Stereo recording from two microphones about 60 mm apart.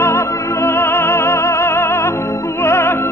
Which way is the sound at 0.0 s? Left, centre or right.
Left.